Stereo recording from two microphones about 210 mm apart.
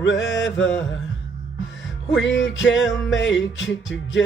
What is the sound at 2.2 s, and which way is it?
Music, 60° left (ahead or behind).